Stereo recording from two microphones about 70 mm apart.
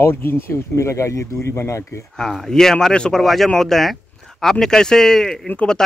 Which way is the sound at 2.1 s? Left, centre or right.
Centre.